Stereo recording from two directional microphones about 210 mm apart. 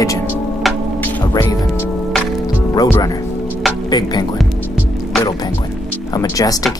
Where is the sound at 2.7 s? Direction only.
20° left (ahead or behind).